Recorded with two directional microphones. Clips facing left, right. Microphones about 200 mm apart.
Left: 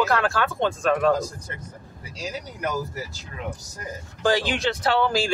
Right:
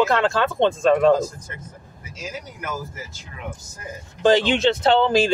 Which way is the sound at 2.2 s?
35° left (ahead or behind).